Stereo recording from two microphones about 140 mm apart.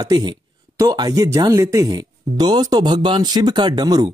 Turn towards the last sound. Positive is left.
turn(degrees=-30)  # may be behind; listen again after turning